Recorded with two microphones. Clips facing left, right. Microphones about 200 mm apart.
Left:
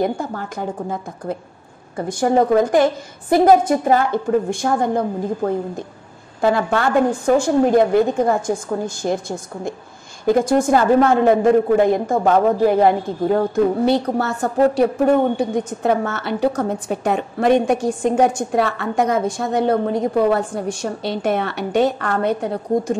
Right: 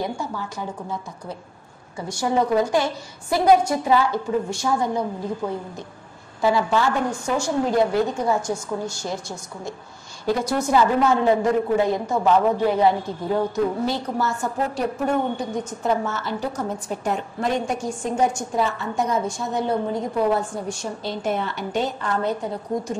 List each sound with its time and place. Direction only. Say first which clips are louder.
0.0 s a woman's voice: left 6 dB; 50° left (ahead or behind)
13.8 s a woman's voice: left 7 dB; 65° left (ahead or behind)